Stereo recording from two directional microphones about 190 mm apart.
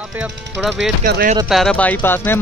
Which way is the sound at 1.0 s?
50° right (ahead or behind).